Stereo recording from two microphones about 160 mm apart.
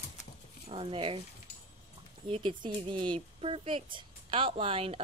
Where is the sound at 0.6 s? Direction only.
35° right (ahead or behind).